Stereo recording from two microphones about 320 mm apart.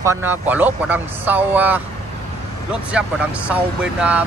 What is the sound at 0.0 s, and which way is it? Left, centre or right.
Speech, centre.